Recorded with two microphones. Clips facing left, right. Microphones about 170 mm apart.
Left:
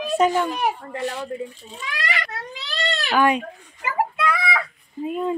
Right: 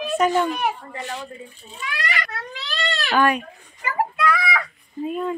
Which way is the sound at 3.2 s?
20° left (ahead or behind).